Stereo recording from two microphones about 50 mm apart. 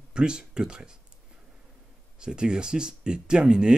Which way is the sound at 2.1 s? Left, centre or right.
Centre.